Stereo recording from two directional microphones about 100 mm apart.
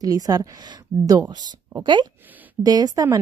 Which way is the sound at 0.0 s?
35° right (ahead or behind).